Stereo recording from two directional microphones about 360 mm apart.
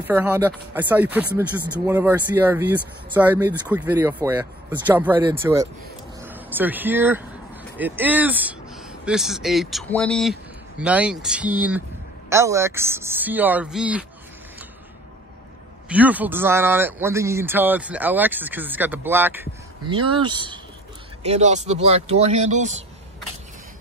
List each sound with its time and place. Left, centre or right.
0.0 s speech: centre
15.9 s speech: centre